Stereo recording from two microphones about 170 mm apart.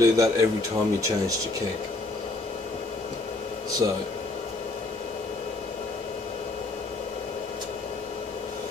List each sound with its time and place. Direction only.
0.0 s speech: 20° right (ahead or behind)
3.8 s speech: 20° right (ahead or behind)